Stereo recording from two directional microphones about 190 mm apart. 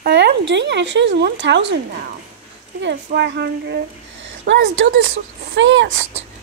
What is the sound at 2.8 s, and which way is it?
Speech, 65° right (ahead or behind).